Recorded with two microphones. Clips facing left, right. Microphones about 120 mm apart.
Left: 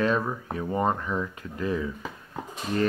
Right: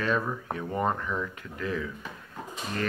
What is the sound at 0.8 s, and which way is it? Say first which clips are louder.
Speech: left 1 dB; 15° left (ahead or behind).